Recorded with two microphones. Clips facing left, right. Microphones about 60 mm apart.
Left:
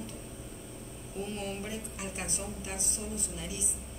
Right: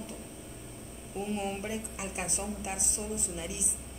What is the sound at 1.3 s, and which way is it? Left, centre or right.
A woman's voice, centre.